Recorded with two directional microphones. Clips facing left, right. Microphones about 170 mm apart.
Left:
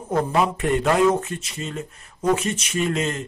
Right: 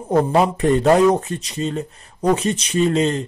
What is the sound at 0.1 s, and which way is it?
Speech, 35° right (ahead or behind).